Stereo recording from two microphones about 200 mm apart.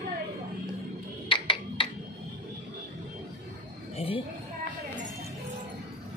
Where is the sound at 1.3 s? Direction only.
25° left (ahead or behind).